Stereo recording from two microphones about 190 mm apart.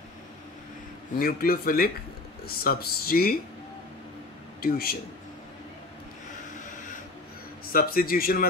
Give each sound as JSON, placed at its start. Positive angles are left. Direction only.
{"t": 1.2, "sound": "speech", "side_deg": 50}
{"t": 4.6, "sound": "speech", "side_deg": 55}
{"t": 7.7, "sound": "speech", "side_deg": 50}